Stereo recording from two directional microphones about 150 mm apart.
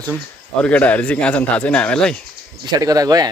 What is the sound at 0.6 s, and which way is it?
Speech, 10° left (ahead or behind).